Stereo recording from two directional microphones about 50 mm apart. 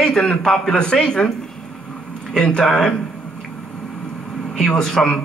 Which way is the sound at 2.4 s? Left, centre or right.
Centre.